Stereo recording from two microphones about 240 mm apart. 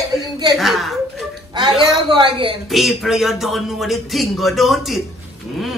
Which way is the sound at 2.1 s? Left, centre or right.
Right.